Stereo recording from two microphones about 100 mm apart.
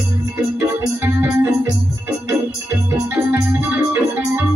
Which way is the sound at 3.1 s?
20° right (ahead or behind).